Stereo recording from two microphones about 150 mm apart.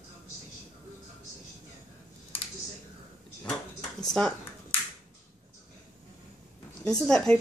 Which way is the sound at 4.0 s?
5° left (ahead or behind).